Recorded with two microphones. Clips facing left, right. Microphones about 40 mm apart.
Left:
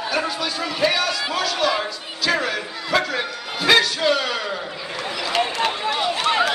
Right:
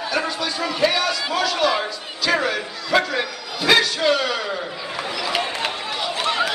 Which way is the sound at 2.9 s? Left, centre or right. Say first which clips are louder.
Right 2 dB; centre.